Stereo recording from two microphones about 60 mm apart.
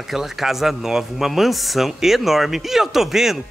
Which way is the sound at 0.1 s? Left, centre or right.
Centre.